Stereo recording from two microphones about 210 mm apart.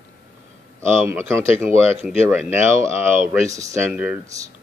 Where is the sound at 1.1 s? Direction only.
10° right (ahead or behind).